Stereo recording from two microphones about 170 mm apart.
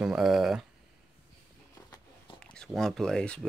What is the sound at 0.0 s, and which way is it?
Speech, 5° right (ahead or behind).